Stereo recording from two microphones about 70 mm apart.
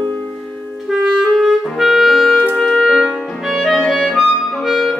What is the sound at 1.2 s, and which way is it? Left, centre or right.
Clarinet, centre.